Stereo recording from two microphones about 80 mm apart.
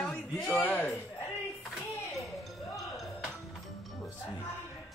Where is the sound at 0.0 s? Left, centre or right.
Centre.